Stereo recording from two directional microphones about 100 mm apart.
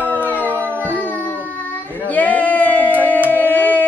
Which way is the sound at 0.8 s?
15° left (ahead or behind).